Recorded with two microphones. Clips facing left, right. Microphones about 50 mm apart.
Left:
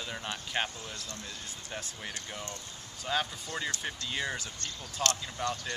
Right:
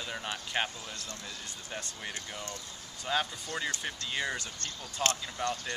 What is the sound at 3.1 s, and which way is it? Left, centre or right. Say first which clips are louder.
Speech: right 1 dB; centre.